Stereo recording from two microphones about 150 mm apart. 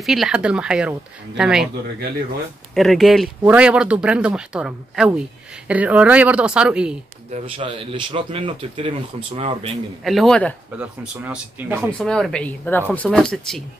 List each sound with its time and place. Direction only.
0.0 s speech: centre (ahead or behind)
2.7 s speech: centre (ahead or behind)
7.4 s speech: 35° right (ahead or behind)
10.0 s speech: centre (ahead or behind)
10.8 s speech: 10° right (ahead or behind)
12.1 s speech: 5° left (ahead or behind)